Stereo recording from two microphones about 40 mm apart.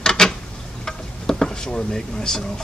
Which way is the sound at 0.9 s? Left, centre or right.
Centre.